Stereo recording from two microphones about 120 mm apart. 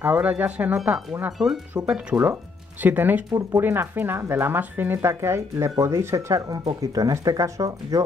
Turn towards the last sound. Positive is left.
turn(degrees=-30)  # may be behind; listen again after turning